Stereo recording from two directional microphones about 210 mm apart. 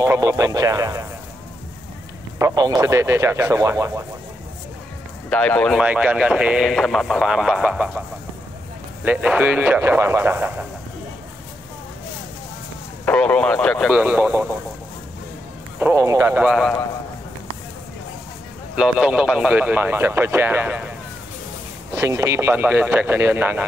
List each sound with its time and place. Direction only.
0.0 s speech: 15° right (ahead or behind)
2.3 s speech: 15° right (ahead or behind)
5.3 s speech: 5° left (ahead or behind)
9.0 s speech: 5° right (ahead or behind)
13.0 s speech: 5° left (ahead or behind)
15.8 s speech: 15° right (ahead or behind)
18.8 s speech: 5° right (ahead or behind)
21.9 s speech: 15° right (ahead or behind)